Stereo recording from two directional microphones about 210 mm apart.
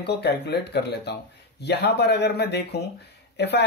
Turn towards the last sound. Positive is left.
turn(degrees=50)  # may be behind; listen again after turning